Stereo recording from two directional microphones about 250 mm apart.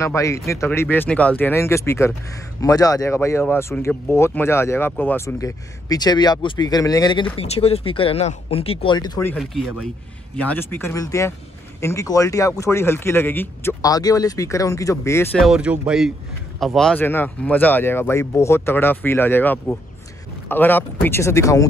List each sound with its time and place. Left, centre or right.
0.0 s speech: centre
9.4 s speech: centre
15.4 s speech: centre